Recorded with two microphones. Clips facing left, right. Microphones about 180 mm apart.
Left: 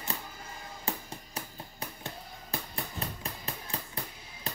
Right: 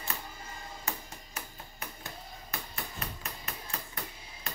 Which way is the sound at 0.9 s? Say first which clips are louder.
Left 4 dB; 30° left (ahead or behind).